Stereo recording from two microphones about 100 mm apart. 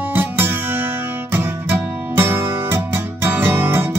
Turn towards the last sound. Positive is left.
turn(degrees=-20)  # may be behind; listen again after turning